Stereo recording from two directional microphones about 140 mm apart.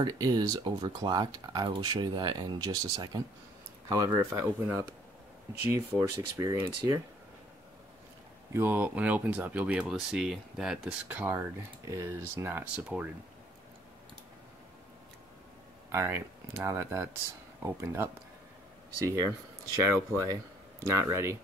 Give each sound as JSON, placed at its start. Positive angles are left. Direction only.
{"t": 0.0, "sound": "speech", "side_deg": -30}
{"t": 8.5, "sound": "speech", "side_deg": -15}
{"t": 15.9, "sound": "speech", "side_deg": -15}
{"t": 20.8, "sound": "speech", "side_deg": -20}